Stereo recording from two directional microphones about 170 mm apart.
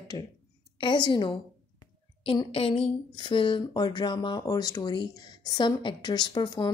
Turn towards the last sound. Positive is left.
turn(degrees=25)  # may be behind; listen again after turning